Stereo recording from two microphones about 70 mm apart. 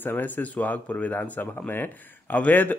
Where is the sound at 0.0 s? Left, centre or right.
Left.